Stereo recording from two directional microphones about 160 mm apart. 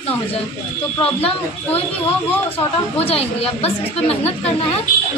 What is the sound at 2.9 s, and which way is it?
A woman's voice, 40° left (ahead or behind).